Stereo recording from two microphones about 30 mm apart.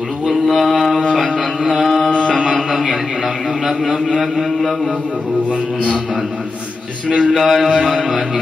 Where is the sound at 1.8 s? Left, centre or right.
Centre.